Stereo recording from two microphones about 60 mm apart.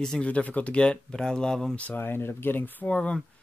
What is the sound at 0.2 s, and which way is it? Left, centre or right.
Speech, left.